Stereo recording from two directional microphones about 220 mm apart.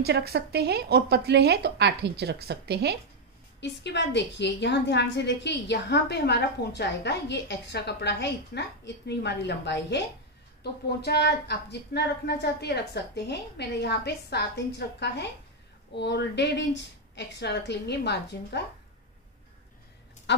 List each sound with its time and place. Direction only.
0.0 s speech: 45° right (ahead or behind)
3.8 s a woman's voice: 50° left (ahead or behind)